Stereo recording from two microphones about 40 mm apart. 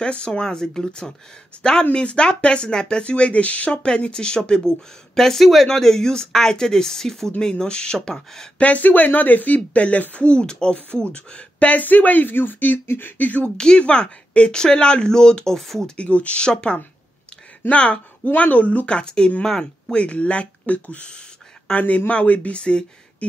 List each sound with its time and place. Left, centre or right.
0.0 s speech: left
7.3 s speech: left
8.5 s speech: left
10.1 s speech: left
11.7 s speech: left
12.8 s a sound: left
13.2 s speech: left
13.6 s speech: left
15.5 s speech: centre
16.0 s speech: left
18.9 s speech: left
22.6 s speech: left